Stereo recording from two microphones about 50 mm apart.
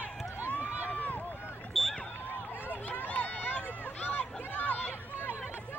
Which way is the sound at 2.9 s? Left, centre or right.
Left.